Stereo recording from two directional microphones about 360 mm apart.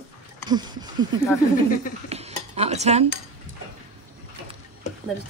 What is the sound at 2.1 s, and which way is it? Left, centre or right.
Cutlery, centre.